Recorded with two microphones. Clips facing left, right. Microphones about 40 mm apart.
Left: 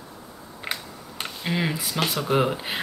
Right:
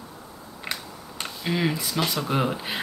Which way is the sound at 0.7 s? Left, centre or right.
Centre.